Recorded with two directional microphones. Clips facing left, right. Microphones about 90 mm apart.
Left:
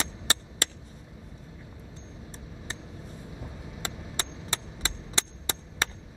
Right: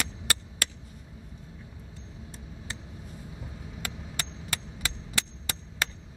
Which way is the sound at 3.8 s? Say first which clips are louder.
Left 2 dB; 25° left (ahead or behind).